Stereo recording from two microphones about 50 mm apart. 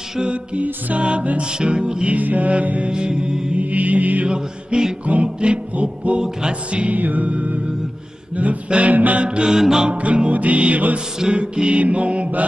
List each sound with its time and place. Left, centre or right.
0.2 s music: right
2.1 s music: right
2.9 s music: centre
3.5 s music: right
4.3 s music: centre
8.6 s music: right
9.9 s music: right